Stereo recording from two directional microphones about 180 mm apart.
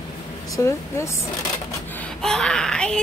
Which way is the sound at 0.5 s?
15° left (ahead or behind).